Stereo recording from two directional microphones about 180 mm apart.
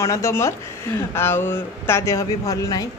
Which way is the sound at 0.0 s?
15° left (ahead or behind).